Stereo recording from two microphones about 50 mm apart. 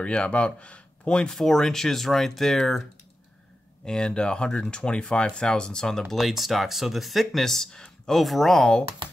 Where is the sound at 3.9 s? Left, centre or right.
Centre.